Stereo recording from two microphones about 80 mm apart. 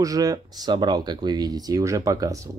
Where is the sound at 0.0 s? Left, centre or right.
Right.